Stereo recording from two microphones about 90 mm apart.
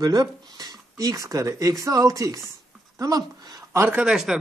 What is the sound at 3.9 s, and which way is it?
Speech, 10° right (ahead or behind).